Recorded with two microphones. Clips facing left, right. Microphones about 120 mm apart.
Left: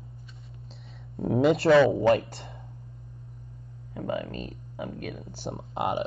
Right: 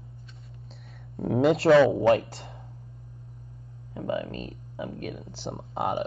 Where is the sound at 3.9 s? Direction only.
30° right (ahead or behind).